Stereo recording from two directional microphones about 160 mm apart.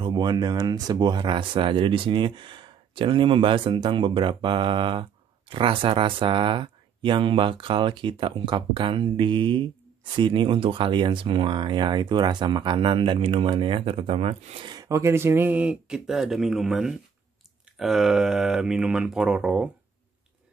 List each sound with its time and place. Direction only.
0.0 s speech: 25° right (ahead or behind)
14.7 s speech: 20° right (ahead or behind); by 19.7 s 5° right (ahead or behind)